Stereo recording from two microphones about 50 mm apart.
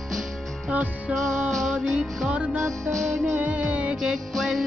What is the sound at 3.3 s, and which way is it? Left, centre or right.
Music, right.